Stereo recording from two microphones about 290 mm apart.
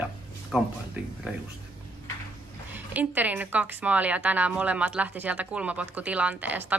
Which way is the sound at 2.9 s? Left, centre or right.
Centre.